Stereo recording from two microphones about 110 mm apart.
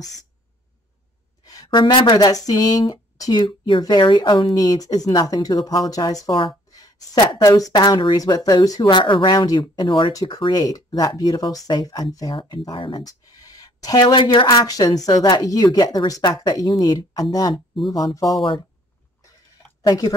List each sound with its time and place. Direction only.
1.4 s speech: 35° left (ahead or behind)
3.4 s speech: 50° left (ahead or behind)
13.0 s speech: 35° left (ahead or behind)
19.9 s speech: 35° left (ahead or behind)